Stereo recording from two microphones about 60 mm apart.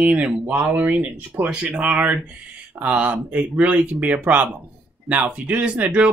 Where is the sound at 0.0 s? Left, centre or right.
Right.